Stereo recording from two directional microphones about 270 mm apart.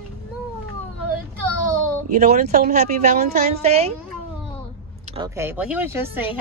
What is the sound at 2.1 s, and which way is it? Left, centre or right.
Speech, right.